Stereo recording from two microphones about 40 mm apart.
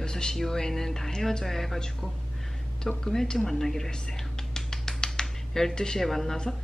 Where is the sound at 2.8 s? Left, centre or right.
Centre.